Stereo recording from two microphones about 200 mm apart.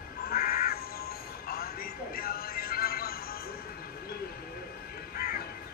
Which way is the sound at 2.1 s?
50° left (ahead or behind).